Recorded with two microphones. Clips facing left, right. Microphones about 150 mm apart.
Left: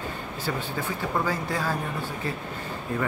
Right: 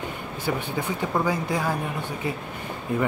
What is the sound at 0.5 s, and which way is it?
Speech, 15° right (ahead or behind).